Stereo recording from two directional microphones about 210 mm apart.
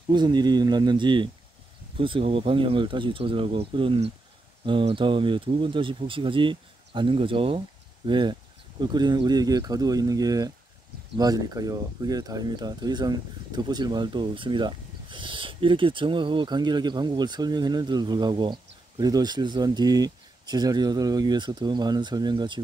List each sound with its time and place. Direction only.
0.1 s speech: 20° right (ahead or behind)